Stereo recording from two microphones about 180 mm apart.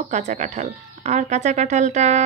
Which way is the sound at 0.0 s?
40° right (ahead or behind).